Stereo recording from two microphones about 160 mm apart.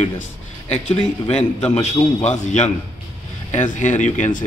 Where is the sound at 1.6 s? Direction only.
45° left (ahead or behind).